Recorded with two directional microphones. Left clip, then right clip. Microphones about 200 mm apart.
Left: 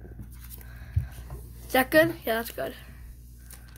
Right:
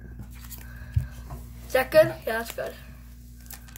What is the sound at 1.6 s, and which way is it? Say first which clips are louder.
A woman's voice: right 2 dB; 45° left (ahead or behind).